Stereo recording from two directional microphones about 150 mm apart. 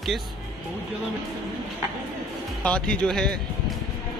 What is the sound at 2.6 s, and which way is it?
Speech, 5° left (ahead or behind).